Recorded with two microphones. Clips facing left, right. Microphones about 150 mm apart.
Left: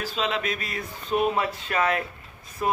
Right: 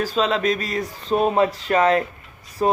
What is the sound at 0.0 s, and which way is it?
Speech, 40° right (ahead or behind).